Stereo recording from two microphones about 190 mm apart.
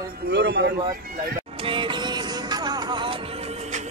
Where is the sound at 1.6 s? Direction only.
25° right (ahead or behind).